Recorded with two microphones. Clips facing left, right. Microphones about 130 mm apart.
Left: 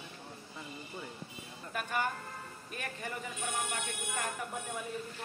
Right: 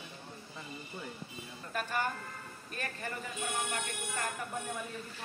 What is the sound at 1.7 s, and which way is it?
Music, 10° left (ahead or behind).